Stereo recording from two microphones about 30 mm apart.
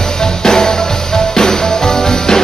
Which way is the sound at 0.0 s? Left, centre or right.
Centre.